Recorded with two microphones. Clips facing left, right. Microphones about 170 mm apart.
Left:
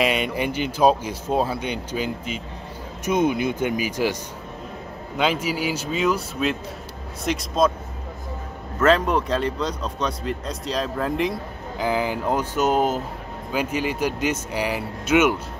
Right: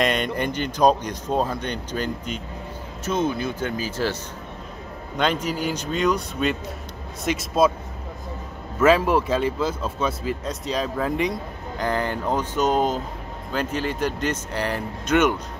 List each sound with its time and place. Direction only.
0.0 s speech: 5° left (ahead or behind)
8.7 s speech: 5° right (ahead or behind)